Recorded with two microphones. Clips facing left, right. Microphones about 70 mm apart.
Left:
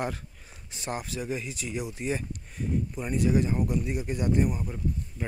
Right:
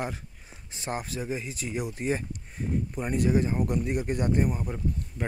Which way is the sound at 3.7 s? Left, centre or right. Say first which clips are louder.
Right 2 dB; right.